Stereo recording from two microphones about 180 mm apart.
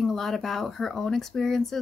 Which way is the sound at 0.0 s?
Centre (ahead or behind).